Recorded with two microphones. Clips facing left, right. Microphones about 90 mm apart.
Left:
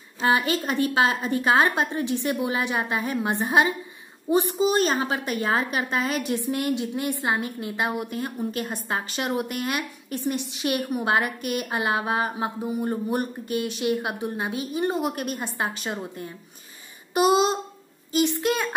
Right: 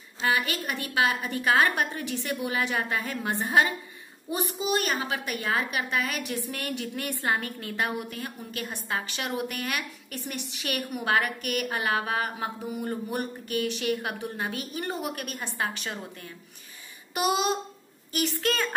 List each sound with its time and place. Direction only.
0.3 s a woman's voice: 30° left (ahead or behind)
8.0 s a woman's voice: 30° left (ahead or behind)
17.1 s a sound: 30° left (ahead or behind)
18.1 s a woman's voice: 20° left (ahead or behind)